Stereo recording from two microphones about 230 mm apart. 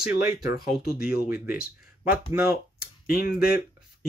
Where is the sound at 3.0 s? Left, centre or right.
Left.